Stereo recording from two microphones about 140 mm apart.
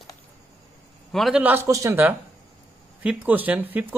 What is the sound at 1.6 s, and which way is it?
A woman's voice, 25° right (ahead or behind).